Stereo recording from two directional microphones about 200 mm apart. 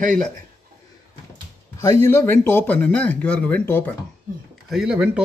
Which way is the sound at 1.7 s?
15° left (ahead or behind).